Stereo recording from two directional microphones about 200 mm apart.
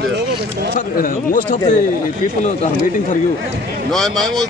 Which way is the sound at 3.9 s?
Centre (ahead or behind).